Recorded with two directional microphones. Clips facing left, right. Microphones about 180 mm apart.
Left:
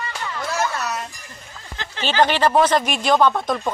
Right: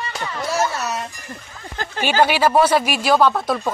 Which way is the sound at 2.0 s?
10° right (ahead or behind).